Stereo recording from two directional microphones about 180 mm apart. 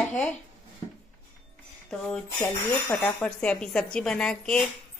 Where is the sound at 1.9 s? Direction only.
5° left (ahead or behind).